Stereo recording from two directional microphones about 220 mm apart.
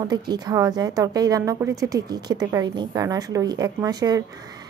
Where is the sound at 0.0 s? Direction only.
20° right (ahead or behind).